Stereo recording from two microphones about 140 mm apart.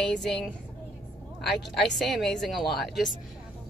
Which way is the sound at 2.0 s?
Centre (ahead or behind).